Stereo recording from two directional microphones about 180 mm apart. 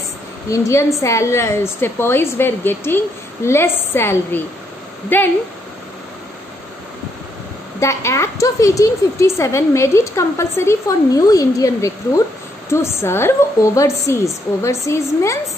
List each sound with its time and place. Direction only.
0.5 s speech: 15° left (ahead or behind)
7.8 s speech: 15° left (ahead or behind)